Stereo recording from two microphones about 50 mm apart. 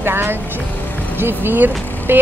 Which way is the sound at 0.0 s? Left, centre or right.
Right.